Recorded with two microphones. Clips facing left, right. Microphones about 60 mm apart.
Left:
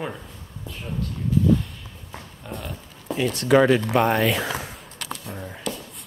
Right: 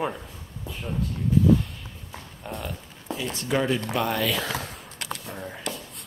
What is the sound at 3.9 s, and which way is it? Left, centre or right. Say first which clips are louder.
Speech: left 6 dB; left.